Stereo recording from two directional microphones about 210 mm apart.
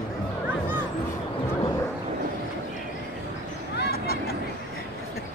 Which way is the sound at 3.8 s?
45° left (ahead or behind).